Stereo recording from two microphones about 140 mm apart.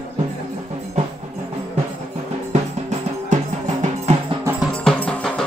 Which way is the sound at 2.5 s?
55° right (ahead or behind).